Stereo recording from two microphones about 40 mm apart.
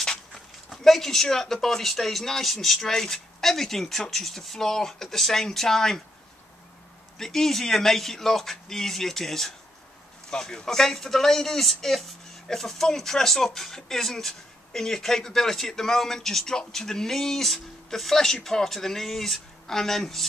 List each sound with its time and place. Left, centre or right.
0.0 s walk: centre
0.8 s speech: centre
7.2 s speech: centre